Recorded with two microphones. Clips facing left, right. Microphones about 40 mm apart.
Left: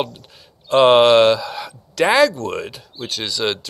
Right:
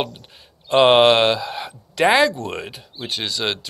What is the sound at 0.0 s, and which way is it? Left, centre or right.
Speech, centre.